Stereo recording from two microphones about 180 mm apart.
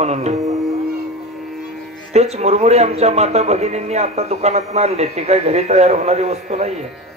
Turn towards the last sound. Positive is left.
turn(degrees=-40)  # may be behind; listen again after turning